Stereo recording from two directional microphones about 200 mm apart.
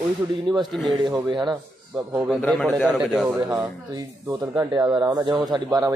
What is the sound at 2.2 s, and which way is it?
Speech, centre (ahead or behind).